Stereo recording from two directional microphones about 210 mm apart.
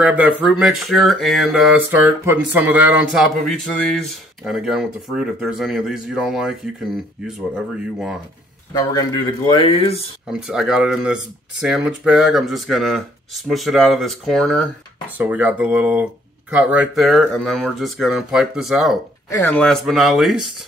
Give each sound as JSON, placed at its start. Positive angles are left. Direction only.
{"t": 0.0, "sound": "speech", "side_deg": -5}
{"t": 8.7, "sound": "speech", "side_deg": 20}
{"t": 10.3, "sound": "speech", "side_deg": -5}
{"t": 19.3, "sound": "speech", "side_deg": 10}